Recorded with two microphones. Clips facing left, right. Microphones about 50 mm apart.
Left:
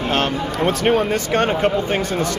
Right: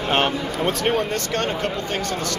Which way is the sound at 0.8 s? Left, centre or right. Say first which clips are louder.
Left 4 dB; centre.